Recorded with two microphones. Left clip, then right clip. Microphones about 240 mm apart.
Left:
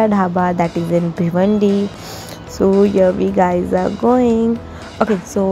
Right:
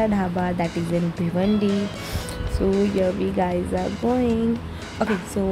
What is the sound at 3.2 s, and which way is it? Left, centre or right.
Speech, centre.